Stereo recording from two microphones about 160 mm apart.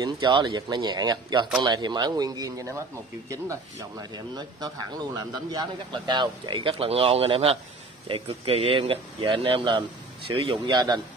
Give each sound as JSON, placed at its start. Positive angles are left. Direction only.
{"t": 0.0, "sound": "speech", "side_deg": -30}
{"t": 4.1, "sound": "speech", "side_deg": -25}